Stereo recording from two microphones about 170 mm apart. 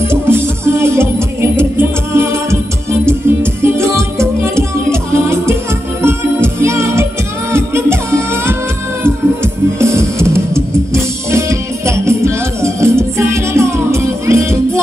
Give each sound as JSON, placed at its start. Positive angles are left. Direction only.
{"t": 0.0, "sound": "music", "side_deg": -15}